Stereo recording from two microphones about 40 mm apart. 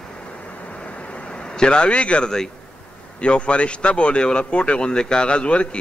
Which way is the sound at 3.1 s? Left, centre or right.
Left.